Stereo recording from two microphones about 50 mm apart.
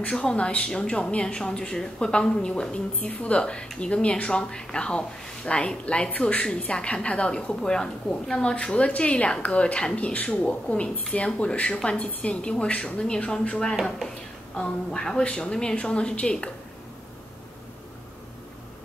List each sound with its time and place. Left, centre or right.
0.1 s a woman's voice: centre